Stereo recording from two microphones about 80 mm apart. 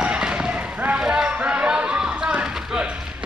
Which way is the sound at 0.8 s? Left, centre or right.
Centre.